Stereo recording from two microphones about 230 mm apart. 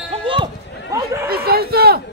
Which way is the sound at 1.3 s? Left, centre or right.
Right.